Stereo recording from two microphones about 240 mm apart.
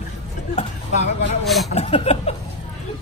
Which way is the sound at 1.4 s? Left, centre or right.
Centre.